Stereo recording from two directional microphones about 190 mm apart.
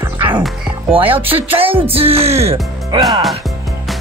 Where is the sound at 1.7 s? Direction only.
30° right (ahead or behind).